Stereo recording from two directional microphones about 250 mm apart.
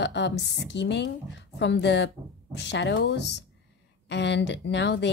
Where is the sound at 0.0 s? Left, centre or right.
Left.